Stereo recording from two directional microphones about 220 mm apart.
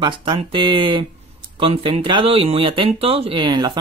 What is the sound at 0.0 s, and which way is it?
Speech, 20° right (ahead or behind).